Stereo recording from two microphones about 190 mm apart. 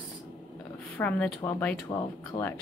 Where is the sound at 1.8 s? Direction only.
20° left (ahead or behind).